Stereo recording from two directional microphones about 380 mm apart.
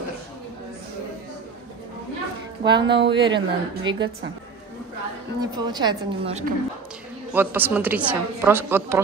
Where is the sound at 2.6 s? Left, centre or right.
Centre.